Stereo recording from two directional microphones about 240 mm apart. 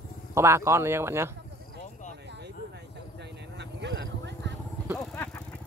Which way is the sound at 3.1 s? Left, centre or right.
Right.